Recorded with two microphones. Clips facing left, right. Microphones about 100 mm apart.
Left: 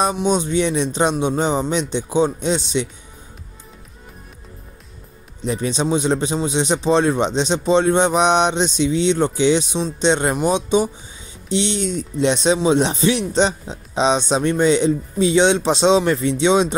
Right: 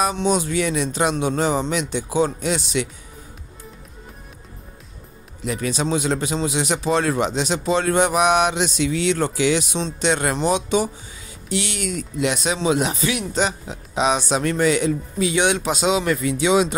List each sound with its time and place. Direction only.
0.1 s a man's voice: 20° left (ahead or behind)
5.4 s a man's voice: 25° left (ahead or behind)